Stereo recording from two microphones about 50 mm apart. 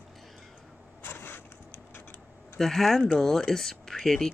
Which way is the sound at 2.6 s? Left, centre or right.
Centre.